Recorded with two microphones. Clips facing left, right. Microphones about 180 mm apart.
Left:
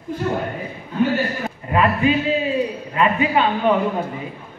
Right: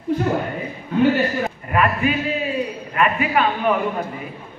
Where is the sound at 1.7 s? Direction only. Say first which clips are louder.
Left 3 dB; 25° left (ahead or behind).